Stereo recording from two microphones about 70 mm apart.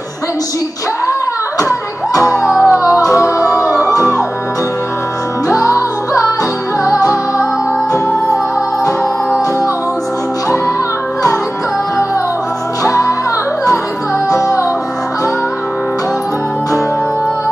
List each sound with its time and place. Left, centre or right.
1.6 s music: left
3.6 s music: right
5.5 s music: left
12.8 s music: left
14.3 s music: left